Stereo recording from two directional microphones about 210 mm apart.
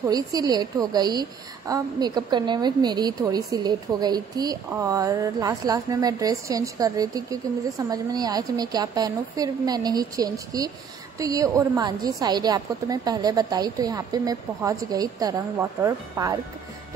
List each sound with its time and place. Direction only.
0.0 s a woman's voice: 15° right (ahead or behind)